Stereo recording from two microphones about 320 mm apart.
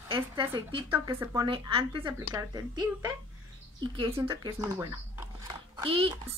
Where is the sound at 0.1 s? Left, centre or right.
Centre.